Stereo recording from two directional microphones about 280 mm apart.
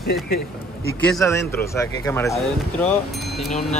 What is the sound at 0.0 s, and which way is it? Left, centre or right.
Speech, left.